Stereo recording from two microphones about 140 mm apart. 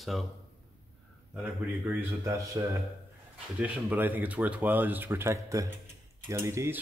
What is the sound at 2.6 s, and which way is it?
Speech, 25° right (ahead or behind).